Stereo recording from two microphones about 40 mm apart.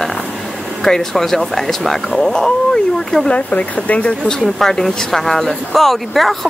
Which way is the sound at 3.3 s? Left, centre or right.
Left.